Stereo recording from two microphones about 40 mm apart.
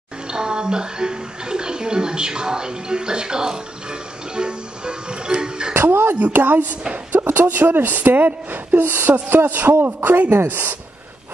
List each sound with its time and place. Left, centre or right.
0.3 s a woman's voice: right
4.4 s music: right
5.8 s a sound: right
6.3 s a woman's voice: right
8.8 s a man's voice: right